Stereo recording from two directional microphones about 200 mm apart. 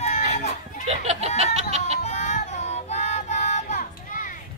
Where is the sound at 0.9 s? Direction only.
35° right (ahead or behind).